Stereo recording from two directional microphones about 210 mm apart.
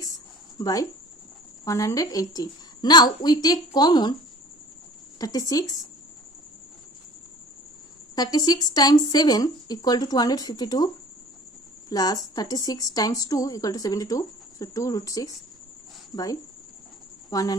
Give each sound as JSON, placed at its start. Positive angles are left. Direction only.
{"t": 0.6, "sound": "speech", "side_deg": 15}
{"t": 5.2, "sound": "a woman's voice", "side_deg": 15}
{"t": 8.2, "sound": "speech", "side_deg": 20}
{"t": 11.9, "sound": "a woman's voice", "side_deg": 20}
{"t": 17.3, "sound": "speech", "side_deg": 15}